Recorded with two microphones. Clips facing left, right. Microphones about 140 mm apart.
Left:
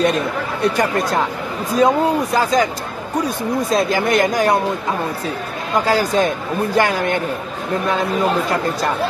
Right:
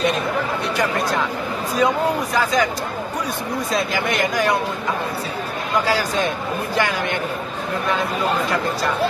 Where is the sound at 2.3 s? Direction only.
35° left (ahead or behind).